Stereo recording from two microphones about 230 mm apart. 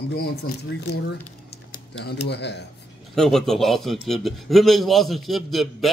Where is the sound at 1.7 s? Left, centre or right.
Left.